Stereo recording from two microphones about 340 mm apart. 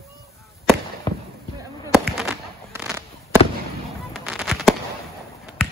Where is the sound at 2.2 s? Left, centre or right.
Centre.